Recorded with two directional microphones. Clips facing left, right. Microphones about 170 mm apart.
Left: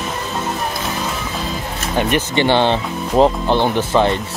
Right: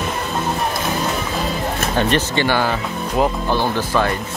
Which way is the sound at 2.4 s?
25° left (ahead or behind).